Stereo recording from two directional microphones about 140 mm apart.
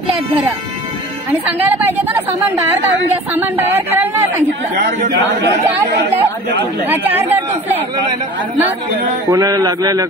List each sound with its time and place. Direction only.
1.6 s speech: 15° right (ahead or behind)
3.3 s speech: 15° right (ahead or behind)
6.9 s speech: 15° right (ahead or behind)
9.3 s speech: 25° right (ahead or behind)